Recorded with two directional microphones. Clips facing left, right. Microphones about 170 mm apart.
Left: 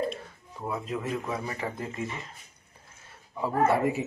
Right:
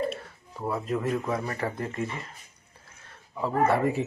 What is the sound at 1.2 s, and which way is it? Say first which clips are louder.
Speech: right 3 dB; 5° left (ahead or behind).